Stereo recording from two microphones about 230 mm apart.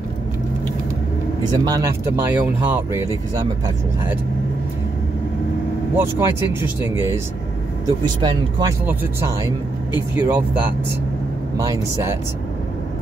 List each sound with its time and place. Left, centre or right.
1.5 s speech: centre
5.9 s speech: centre
8.2 s speech: centre
10.1 s speech: centre
11.5 s speech: centre